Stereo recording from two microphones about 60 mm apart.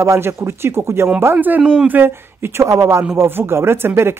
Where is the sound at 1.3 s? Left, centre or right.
Right.